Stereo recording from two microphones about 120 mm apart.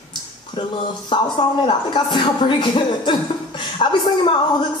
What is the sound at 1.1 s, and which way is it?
Speech, 45° left (ahead or behind).